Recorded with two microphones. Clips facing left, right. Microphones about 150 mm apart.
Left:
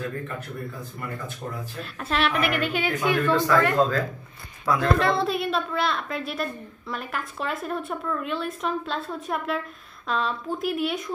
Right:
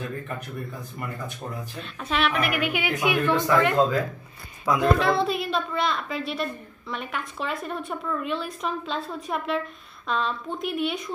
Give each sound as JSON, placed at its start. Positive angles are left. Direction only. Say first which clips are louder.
{"t": 1.8, "sound": "a woman's voice", "louder": "even", "side_deg": 0}
{"t": 2.6, "sound": "a woman's voice", "louder": "even", "side_deg": -15}
{"t": 4.9, "sound": "a woman's voice", "louder": "even", "side_deg": 0}